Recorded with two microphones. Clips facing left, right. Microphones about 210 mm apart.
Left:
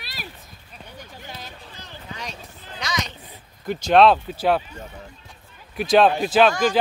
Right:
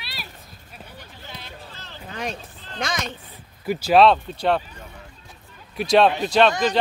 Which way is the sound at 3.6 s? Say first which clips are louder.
Even; 5° right (ahead or behind).